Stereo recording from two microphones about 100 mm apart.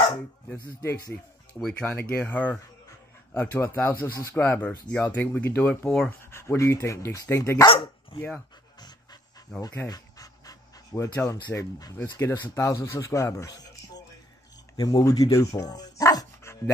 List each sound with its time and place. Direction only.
0.5 s speech: 25° left (ahead or behind)
1.6 s speech: 5° left (ahead or behind)
1.9 s speech: 20° left (ahead or behind)
6.0 s speech: 25° left (ahead or behind)
7.6 s speech: 60° left (ahead or behind)
9.8 s pant: 40° left (ahead or behind)
11.5 s speech: 30° left (ahead or behind)
14.8 s speech: 40° left (ahead or behind)